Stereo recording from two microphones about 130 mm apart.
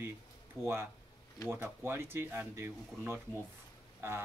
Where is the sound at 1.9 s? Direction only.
20° right (ahead or behind).